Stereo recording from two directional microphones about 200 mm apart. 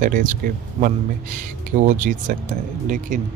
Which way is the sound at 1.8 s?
40° right (ahead or behind).